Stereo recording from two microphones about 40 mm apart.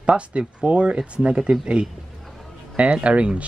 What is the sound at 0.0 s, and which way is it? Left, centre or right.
Speech, right.